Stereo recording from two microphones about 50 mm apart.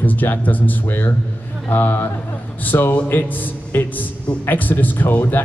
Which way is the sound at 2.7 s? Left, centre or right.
Left.